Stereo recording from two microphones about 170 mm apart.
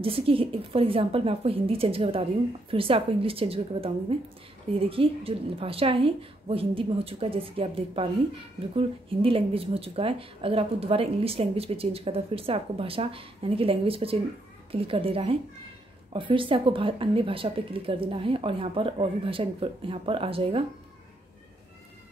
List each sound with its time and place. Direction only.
0.0 s a woman's voice: 30° right (ahead or behind)